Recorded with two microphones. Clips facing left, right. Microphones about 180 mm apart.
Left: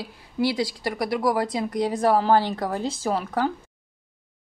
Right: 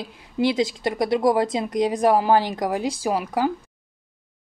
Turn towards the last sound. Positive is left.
turn(degrees=-10)  # may be behind; listen again after turning